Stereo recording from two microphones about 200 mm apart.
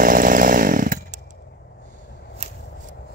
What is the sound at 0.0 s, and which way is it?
Chainsaw, 40° right (ahead or behind).